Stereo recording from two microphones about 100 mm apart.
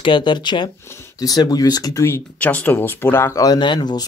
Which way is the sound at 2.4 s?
15° left (ahead or behind).